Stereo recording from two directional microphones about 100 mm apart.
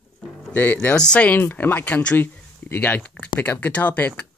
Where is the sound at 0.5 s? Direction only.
20° left (ahead or behind).